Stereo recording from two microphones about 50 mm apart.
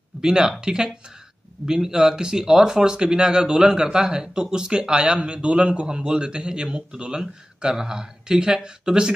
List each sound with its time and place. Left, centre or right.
0.2 s speech: centre